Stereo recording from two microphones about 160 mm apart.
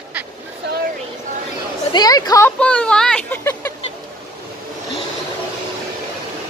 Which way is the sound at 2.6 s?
5° left (ahead or behind).